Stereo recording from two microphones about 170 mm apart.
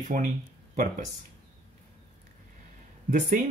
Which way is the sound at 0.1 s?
50° right (ahead or behind).